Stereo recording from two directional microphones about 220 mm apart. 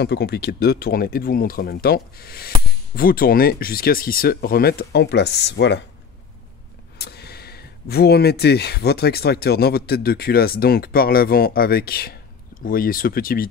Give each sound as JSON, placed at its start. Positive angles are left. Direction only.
{"t": 0.0, "sound": "speech", "side_deg": 50}
{"t": 7.0, "sound": "speech", "side_deg": 45}